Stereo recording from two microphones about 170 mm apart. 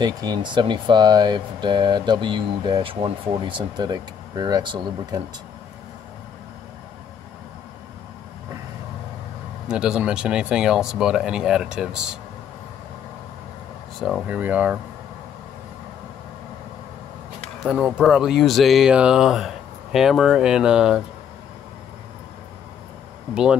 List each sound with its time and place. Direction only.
0.0 s speech: 25° right (ahead or behind)
9.7 s speech: 5° right (ahead or behind)
14.0 s speech: 5° right (ahead or behind)
17.6 s speech: 5° right (ahead or behind)
23.3 s speech: 5° right (ahead or behind)